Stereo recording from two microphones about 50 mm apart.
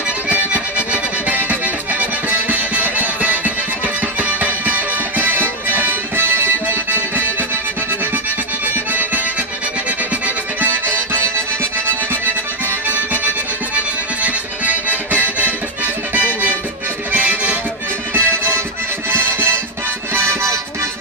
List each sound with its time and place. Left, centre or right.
0.3 s music: right
12.8 s music: right
16.2 s music: right
18.1 s music: right
20.2 s music: right